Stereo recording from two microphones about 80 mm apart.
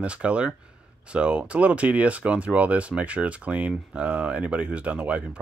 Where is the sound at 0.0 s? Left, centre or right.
Centre.